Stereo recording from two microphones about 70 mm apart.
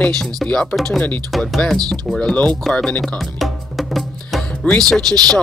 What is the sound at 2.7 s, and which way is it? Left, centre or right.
Music, centre.